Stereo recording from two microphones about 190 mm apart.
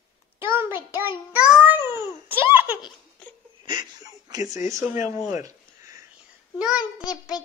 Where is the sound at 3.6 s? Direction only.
25° right (ahead or behind).